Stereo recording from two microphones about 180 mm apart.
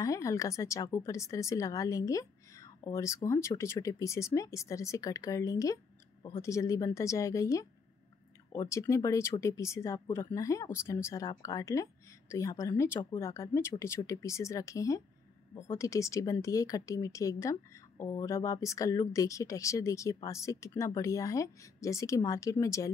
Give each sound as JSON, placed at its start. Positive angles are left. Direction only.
{"t": 0.0, "sound": "speech", "side_deg": 15}
{"t": 8.6, "sound": "speech", "side_deg": 15}